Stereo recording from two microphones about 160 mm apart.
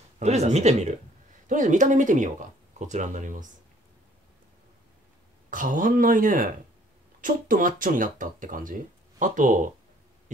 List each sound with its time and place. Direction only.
0.2 s speech: 45° right (ahead or behind)
5.5 s speech: 55° right (ahead or behind)